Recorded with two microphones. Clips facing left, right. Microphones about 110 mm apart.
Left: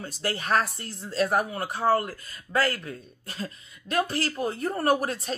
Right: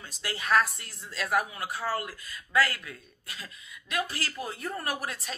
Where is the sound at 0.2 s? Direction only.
40° left (ahead or behind).